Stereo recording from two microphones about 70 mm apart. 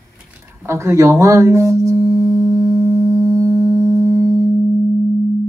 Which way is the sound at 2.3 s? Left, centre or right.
Right.